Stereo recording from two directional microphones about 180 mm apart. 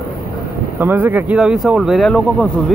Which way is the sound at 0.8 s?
10° right (ahead or behind).